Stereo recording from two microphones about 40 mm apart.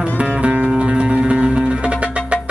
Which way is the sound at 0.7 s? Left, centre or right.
Right.